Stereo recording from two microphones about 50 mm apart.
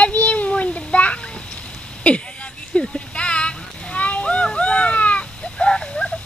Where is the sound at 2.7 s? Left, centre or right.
Centre.